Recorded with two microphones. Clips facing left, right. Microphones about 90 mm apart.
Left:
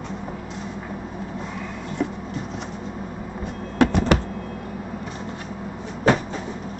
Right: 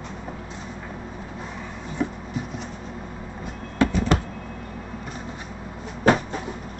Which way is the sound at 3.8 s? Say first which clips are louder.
Left 3 dB; 70° left (ahead or behind).